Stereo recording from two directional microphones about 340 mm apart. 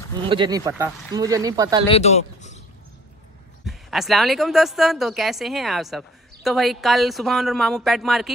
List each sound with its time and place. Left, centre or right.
0.1 s speech: centre
1.9 s speech: centre
3.6 s a woman's voice: centre